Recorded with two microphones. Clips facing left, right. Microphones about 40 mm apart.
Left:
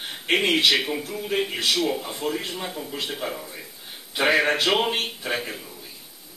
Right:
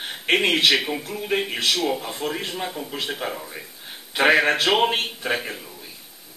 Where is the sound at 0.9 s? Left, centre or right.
Centre; by 2.4 s right.